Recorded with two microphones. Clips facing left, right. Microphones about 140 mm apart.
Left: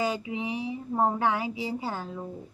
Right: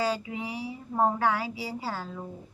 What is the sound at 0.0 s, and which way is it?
Speech, 20° left (ahead or behind).